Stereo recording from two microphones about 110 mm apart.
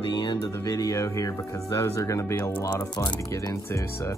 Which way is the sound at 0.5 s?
30° left (ahead or behind).